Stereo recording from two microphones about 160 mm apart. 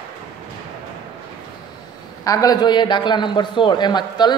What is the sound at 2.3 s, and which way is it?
A man's voice, 20° left (ahead or behind).